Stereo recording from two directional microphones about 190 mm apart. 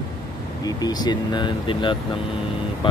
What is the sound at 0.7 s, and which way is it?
Speech, 20° left (ahead or behind).